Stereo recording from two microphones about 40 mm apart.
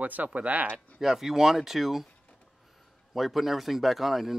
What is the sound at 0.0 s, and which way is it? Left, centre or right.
Speech, right.